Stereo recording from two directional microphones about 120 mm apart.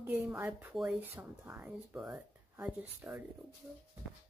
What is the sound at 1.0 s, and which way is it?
Speech, 15° right (ahead or behind).